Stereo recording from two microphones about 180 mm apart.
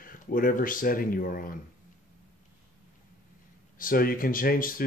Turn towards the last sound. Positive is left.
turn(degrees=50)  # may be behind; listen again after turning